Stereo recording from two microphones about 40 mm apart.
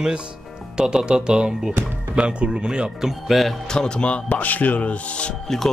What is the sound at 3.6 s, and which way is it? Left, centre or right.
Speech, centre.